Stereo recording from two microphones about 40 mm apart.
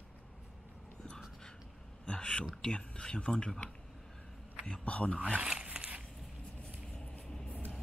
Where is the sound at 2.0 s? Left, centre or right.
Left.